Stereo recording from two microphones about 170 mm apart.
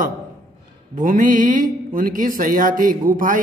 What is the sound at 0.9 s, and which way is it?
Speech, 50° right (ahead or behind).